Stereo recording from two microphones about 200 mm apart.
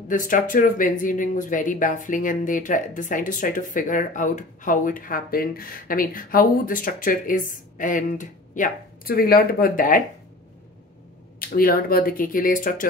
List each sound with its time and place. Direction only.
0.1 s speech: 40° left (ahead or behind)
11.3 s speech: 45° left (ahead or behind)